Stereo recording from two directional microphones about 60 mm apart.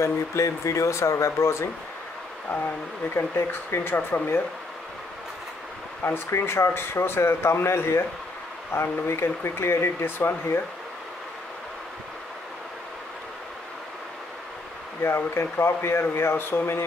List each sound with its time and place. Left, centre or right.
0.0 s speech: left
3.2 s speech: left
6.0 s speech: left
15.0 s speech: left